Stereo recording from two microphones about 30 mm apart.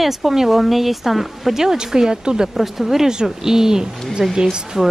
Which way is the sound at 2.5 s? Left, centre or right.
Centre.